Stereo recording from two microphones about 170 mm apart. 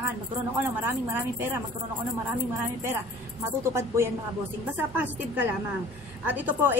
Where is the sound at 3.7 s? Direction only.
15° right (ahead or behind).